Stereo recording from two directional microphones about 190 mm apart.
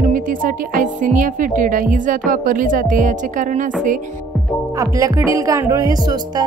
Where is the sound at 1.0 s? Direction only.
45° right (ahead or behind).